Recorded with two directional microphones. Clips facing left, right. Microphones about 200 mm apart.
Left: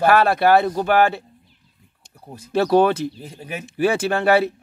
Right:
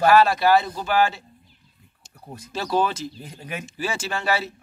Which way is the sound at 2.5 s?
60° left (ahead or behind).